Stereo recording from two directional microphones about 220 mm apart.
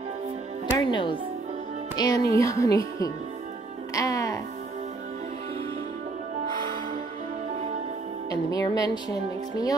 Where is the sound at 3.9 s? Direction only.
15° left (ahead or behind).